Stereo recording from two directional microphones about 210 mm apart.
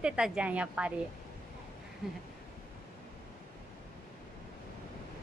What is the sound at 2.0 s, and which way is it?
Speech, centre (ahead or behind).